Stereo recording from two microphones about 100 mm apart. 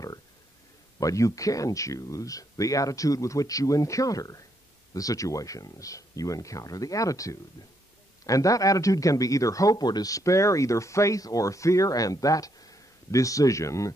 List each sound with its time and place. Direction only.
0.9 s speech: 35° left (ahead or behind)